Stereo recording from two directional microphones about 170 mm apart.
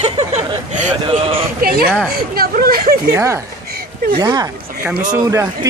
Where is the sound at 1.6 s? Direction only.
60° right (ahead or behind).